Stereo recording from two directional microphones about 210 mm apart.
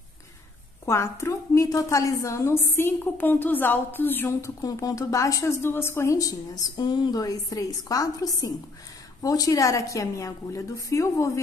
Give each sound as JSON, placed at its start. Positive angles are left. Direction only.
{"t": 0.8, "sound": "a woman's voice", "side_deg": 15}